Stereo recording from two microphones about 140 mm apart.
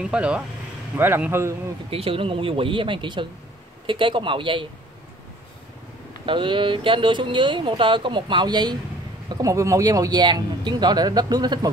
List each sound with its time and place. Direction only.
0.0 s speech: 5° right (ahead or behind)
1.9 s speech: 40° right (ahead or behind)
6.2 s a man's voice: 35° right (ahead or behind)